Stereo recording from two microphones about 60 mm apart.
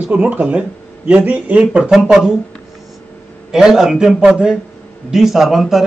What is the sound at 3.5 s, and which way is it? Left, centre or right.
A man's voice, centre.